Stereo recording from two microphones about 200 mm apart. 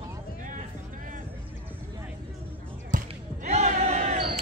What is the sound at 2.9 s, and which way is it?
Basketball bounce, 35° right (ahead or behind).